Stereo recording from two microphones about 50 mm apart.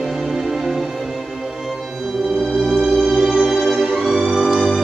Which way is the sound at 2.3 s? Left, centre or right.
Centre.